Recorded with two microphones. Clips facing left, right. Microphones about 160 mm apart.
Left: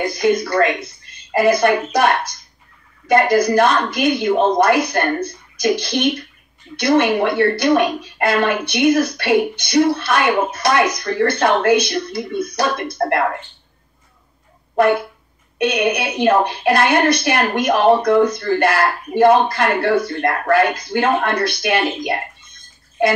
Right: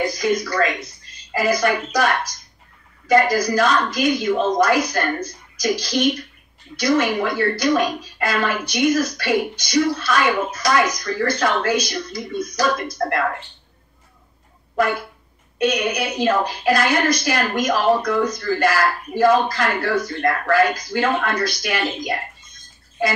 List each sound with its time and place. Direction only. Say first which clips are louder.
0.0 s a woman's voice: left 3 dB; 60° left (ahead or behind)
14.8 s a woman's voice: left 6 dB; 60° left (ahead or behind)